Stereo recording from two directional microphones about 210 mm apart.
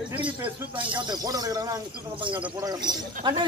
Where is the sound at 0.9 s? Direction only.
15° right (ahead or behind).